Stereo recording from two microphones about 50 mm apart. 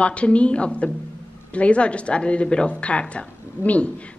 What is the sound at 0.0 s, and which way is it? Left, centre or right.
Speech, left.